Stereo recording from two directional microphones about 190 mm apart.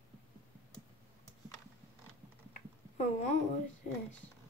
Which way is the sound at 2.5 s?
40° left (ahead or behind).